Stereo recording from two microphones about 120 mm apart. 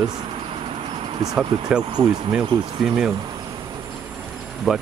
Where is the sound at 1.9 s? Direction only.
35° right (ahead or behind).